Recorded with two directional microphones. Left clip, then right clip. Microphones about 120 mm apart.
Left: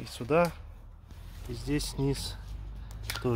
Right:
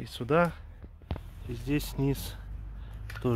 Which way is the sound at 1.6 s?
10° right (ahead or behind).